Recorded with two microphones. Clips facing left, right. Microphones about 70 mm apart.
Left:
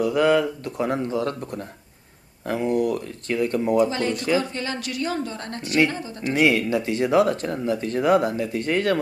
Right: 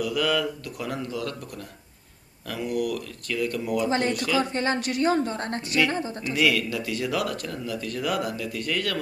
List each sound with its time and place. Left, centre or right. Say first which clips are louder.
0.0 s speech: left 6 dB; left
4.4 s a woman's voice: right 2 dB; right
6.2 s speech: left 5 dB; left